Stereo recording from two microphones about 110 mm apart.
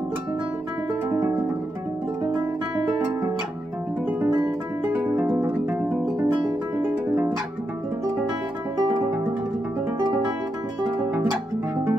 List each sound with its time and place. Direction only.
1.0 s music: 25° right (ahead or behind)
4.8 s music: 15° right (ahead or behind)